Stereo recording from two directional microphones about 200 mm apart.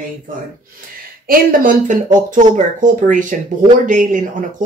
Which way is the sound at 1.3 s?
45° right (ahead or behind).